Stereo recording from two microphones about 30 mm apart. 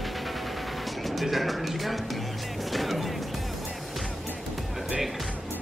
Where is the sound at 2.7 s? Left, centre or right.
Centre.